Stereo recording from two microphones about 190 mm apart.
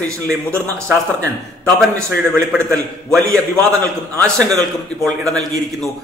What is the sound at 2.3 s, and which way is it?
A man's voice, 5° left (ahead or behind).